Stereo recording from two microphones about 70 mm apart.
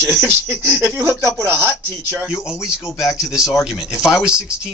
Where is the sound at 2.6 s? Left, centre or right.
Centre.